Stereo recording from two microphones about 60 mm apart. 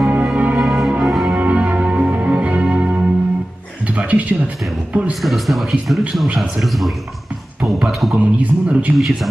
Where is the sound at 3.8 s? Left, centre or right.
Right.